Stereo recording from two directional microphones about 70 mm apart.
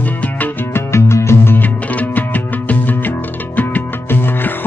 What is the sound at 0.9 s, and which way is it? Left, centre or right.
Music, left.